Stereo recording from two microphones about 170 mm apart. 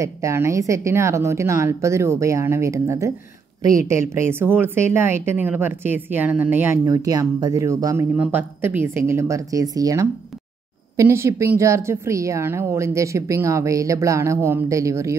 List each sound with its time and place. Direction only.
0.0 s a woman's voice: 15° right (ahead or behind)